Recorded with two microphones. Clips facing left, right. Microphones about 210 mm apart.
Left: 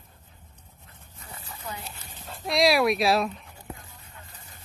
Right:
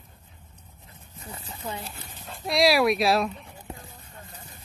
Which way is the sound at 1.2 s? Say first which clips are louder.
Right 4 dB; 25° right (ahead or behind).